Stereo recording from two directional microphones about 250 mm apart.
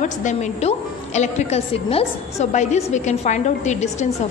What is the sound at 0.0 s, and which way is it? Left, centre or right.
A woman's voice, left.